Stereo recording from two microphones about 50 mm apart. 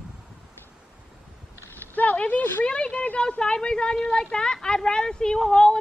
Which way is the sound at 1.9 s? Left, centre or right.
Left.